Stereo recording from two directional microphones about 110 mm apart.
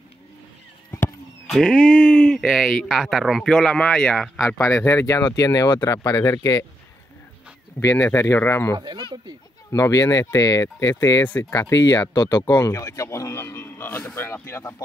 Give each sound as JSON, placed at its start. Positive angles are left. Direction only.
{"t": 1.5, "sound": "speech", "side_deg": 0}
{"t": 4.6, "sound": "speech", "side_deg": 25}
{"t": 7.8, "sound": "a man's voice", "side_deg": 30}
{"t": 8.7, "sound": "speech", "side_deg": -40}
{"t": 9.7, "sound": "speech", "side_deg": 30}
{"t": 12.5, "sound": "a man's voice", "side_deg": 25}